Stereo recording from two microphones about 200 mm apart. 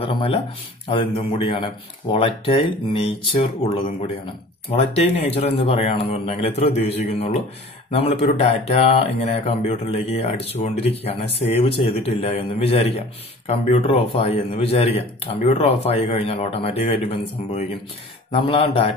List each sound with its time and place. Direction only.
0.0 s speech: 25° left (ahead or behind)